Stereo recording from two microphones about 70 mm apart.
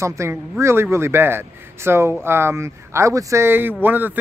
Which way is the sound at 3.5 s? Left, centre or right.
Right.